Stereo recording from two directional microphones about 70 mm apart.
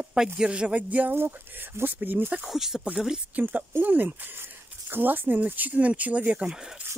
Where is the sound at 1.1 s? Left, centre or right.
Right.